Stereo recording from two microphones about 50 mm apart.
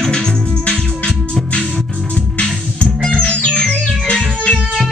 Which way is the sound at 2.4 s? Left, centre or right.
Left.